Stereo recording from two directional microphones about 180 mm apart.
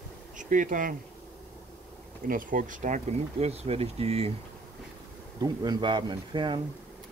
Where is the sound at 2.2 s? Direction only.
50° right (ahead or behind).